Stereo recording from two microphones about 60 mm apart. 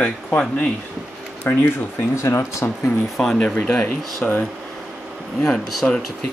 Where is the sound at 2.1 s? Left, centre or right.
Left.